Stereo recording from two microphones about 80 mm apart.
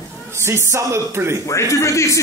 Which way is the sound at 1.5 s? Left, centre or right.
Left.